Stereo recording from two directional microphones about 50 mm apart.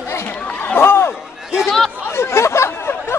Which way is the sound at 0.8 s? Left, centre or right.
Left.